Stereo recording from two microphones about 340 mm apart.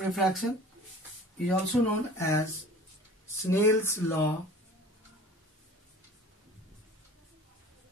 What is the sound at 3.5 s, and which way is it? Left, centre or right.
Speech, centre.